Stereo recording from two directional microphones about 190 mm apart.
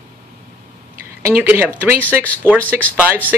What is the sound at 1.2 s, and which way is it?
Speech, 10° right (ahead or behind).